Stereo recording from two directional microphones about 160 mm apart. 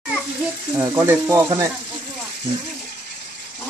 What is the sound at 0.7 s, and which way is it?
Speech, 15° right (ahead or behind).